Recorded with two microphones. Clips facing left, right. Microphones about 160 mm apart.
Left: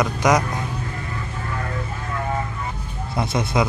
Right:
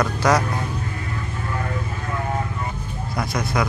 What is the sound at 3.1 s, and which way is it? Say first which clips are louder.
Speech: left 2 dB; 25° left (ahead or behind).